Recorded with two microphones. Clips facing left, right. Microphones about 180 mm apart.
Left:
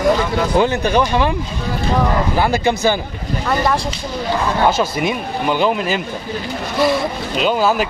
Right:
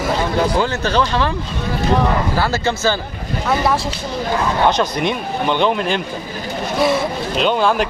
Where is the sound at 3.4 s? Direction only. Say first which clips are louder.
Right 1 dB; 5° right (ahead or behind).